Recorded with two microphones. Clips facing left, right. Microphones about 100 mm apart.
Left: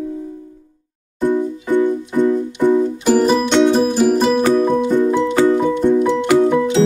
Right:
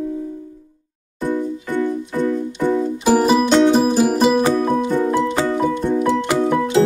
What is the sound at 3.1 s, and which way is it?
Music, 5° right (ahead or behind).